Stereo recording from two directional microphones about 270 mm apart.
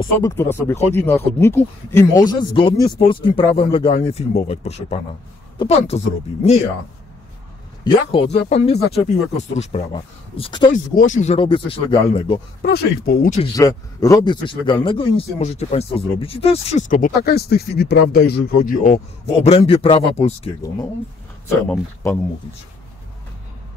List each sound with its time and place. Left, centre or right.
0.0 s speech: centre
7.8 s speech: centre
12.6 s speech: left
13.6 s speech: centre; by 18.9 s left
19.4 s speech: left
21.5 s speech: centre